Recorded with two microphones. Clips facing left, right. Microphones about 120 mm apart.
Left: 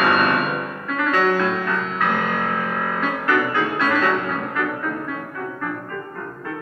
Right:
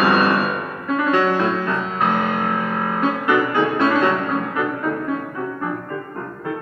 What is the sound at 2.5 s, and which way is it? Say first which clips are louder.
Music: right 2 dB; 15° right (ahead or behind).